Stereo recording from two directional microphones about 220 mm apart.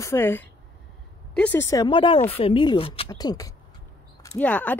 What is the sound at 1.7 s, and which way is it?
Speech, 20° left (ahead or behind).